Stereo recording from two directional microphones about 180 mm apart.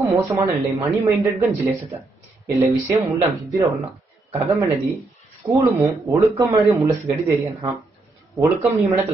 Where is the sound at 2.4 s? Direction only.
15° right (ahead or behind).